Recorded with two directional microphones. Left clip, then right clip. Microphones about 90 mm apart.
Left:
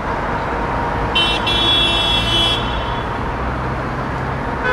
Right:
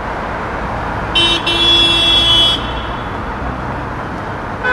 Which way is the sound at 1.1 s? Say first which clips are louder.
Right 4 dB; 30° right (ahead or behind).